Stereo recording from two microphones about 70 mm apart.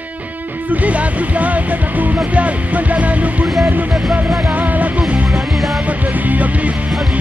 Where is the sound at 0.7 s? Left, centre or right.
Right.